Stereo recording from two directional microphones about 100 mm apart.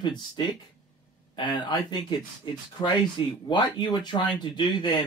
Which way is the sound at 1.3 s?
50° left (ahead or behind).